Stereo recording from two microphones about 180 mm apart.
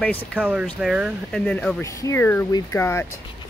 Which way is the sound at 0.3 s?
5° right (ahead or behind).